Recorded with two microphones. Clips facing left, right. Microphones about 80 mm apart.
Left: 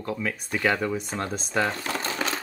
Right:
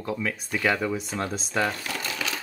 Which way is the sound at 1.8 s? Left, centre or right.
Left.